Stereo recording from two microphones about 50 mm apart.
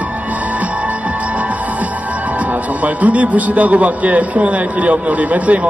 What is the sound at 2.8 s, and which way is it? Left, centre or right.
A man's voice, right.